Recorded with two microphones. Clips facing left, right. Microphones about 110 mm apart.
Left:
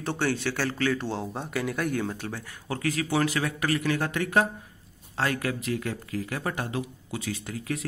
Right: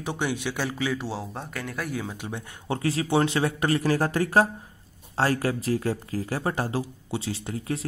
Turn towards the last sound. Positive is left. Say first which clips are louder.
# right 2 dB
turn(degrees=-30)  # may be behind; listen again after turning